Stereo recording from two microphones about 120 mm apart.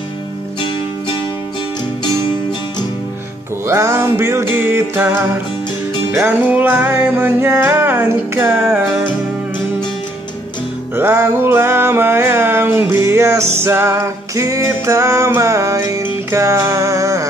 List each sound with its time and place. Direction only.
3.6 s music: 25° right (ahead or behind)
6.1 s music: 15° right (ahead or behind)
11.0 s music: 20° right (ahead or behind)